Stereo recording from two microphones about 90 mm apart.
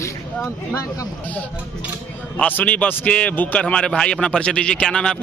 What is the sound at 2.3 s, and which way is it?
A man's voice, 15° left (ahead or behind).